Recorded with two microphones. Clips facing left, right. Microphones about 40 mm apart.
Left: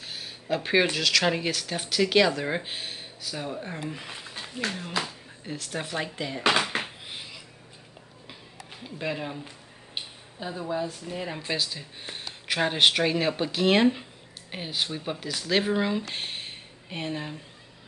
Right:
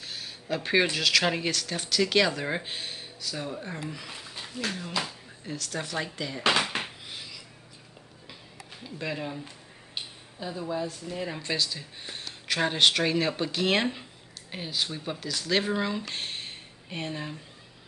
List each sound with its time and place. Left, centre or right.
0.0 s speech: centre
1.5 s speech: centre
3.8 s speech: left
6.7 s a sound: centre
8.8 s speech: centre
14.5 s speech: centre
16.2 s a sound: centre